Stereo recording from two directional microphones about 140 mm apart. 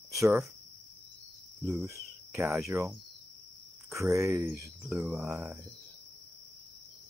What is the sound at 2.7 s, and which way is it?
Speech, 20° right (ahead or behind).